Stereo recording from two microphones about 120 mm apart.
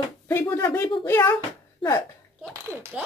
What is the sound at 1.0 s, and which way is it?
Speech, 20° left (ahead or behind).